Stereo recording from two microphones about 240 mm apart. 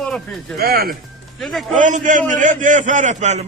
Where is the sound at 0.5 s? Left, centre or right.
Right.